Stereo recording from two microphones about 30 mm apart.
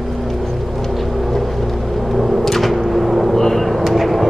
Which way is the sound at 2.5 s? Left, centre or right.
Centre.